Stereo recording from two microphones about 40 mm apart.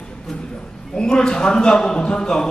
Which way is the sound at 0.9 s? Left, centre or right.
Centre.